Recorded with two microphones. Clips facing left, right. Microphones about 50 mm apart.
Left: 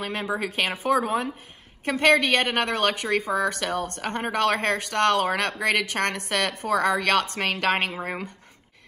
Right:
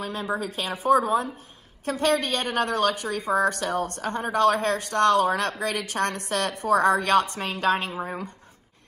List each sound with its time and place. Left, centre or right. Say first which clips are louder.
0.0 s a woman's voice: left 1 dB; left
0.7 s speech: right 4 dB; left
7.0 s a woman's voice: right 1 dB; left